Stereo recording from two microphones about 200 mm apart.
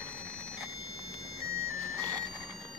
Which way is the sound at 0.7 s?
90° right.